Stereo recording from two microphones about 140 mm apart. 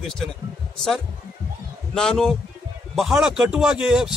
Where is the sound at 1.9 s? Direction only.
5° left (ahead or behind).